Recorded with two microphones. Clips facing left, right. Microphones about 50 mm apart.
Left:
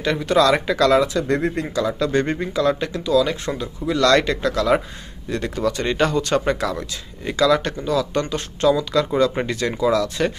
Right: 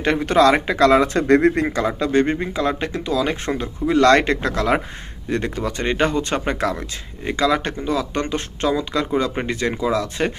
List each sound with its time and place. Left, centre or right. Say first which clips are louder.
0.0 s speech: right 2 dB; right
2.0 s speech: right 2 dB; centre